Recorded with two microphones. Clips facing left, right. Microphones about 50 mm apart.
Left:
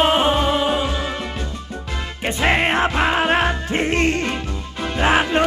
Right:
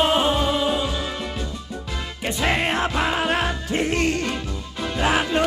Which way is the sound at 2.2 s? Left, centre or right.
Left.